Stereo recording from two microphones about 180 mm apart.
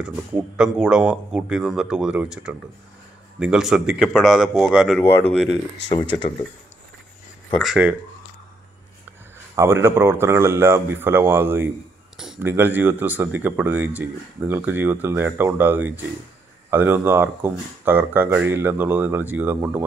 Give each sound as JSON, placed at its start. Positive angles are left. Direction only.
{"t": 0.0, "sound": "speech", "side_deg": -5}
{"t": 5.9, "sound": "speech", "side_deg": 25}
{"t": 7.5, "sound": "speech", "side_deg": -5}
{"t": 9.6, "sound": "speech", "side_deg": -15}